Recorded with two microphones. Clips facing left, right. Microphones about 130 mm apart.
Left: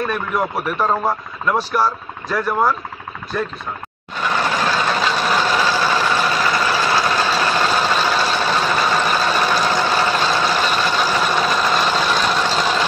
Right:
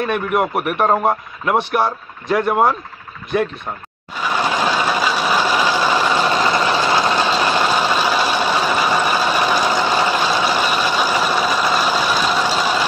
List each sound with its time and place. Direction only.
0.0 s a man's voice: 60° right (ahead or behind)
1.8 s speech: 25° right (ahead or behind)
2.2 s a man's voice: 60° right (ahead or behind)
4.2 s vehicle: 15° right (ahead or behind)